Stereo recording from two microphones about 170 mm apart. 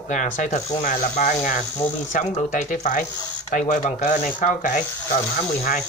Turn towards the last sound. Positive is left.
turn(degrees=45)  # may be behind; listen again after turning